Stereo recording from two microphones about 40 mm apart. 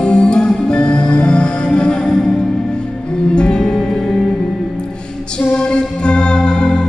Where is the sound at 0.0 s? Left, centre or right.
Left.